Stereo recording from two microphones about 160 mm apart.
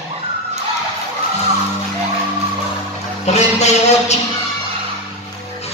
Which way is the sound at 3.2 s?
45° left (ahead or behind).